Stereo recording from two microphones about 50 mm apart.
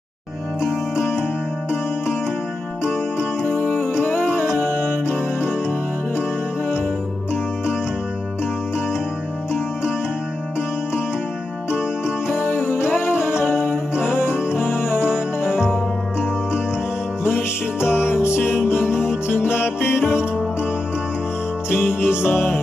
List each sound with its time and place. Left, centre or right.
0.9 s music: centre
3.4 s music: left
3.9 s music: left
12.4 s music: left
15.1 s music: centre
17.7 s music: centre
18.0 s music: left
21.6 s music: left